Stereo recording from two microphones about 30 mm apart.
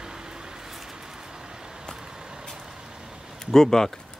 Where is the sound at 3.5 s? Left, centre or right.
Centre.